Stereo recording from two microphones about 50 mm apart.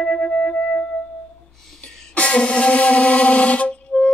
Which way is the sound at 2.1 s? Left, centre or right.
Left.